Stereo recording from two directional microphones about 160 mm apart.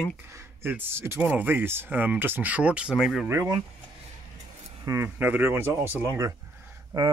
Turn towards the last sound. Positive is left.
turn(degrees=-25)  # may be behind; listen again after turning